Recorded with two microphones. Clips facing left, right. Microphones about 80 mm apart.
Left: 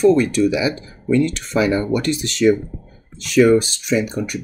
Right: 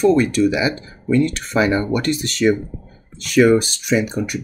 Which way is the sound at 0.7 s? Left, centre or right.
Right.